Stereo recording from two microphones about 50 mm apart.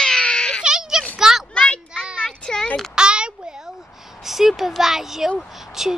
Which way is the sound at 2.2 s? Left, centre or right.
Centre.